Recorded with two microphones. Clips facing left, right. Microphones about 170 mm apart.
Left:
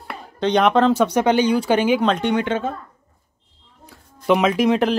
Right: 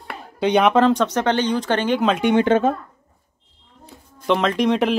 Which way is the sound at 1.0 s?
10° left (ahead or behind).